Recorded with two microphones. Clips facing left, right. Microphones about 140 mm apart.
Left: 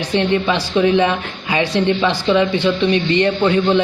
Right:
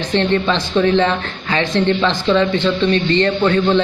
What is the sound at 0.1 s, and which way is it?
Speech, 15° left (ahead or behind).